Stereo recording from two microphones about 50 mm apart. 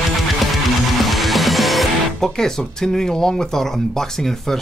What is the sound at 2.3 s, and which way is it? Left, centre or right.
Speech, centre.